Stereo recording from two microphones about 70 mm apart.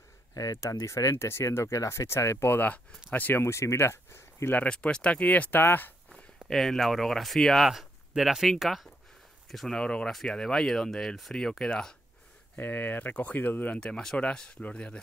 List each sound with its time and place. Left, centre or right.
0.3 s speech: left
3.4 s speech: left
4.6 s speech: centre
6.5 s speech: centre
12.5 s speech: left
13.7 s speech: centre